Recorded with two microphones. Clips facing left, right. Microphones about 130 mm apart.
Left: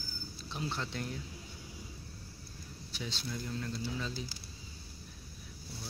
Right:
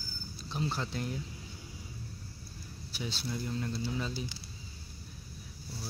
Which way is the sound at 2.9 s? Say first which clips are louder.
Right 3 dB; 10° right (ahead or behind).